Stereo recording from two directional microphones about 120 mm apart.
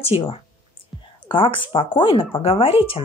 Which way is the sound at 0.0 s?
55° left (ahead or behind).